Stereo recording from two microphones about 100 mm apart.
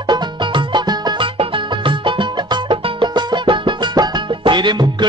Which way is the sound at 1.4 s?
55° right (ahead or behind).